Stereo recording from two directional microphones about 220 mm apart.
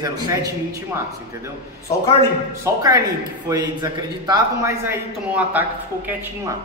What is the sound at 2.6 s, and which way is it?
A man's voice, 15° right (ahead or behind).